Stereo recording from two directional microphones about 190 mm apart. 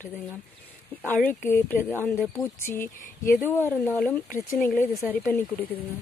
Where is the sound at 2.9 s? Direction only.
45° left (ahead or behind).